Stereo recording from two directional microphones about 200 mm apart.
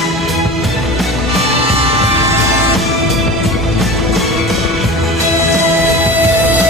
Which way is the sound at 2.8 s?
Centre (ahead or behind).